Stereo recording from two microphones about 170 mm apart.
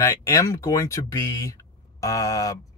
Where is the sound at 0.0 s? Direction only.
15° left (ahead or behind).